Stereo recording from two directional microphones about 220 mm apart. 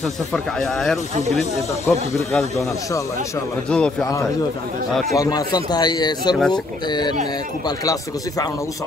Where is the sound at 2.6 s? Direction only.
15° left (ahead or behind).